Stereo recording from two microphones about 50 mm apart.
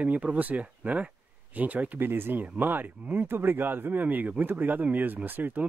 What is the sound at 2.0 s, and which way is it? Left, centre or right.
Speech, right.